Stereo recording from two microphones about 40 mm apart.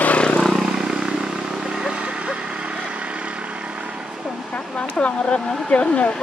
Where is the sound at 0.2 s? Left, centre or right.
Left.